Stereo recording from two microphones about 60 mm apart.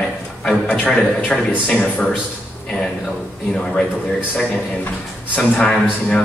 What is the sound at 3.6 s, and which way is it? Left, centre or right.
Speech, centre.